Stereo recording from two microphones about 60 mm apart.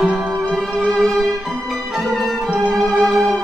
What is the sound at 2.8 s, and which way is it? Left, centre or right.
Music, centre.